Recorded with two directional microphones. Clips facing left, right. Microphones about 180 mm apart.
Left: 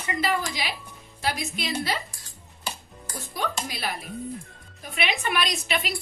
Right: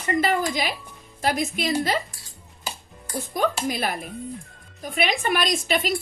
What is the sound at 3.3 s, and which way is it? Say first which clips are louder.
A woman's voice: right 7 dB; 50° right (ahead or behind).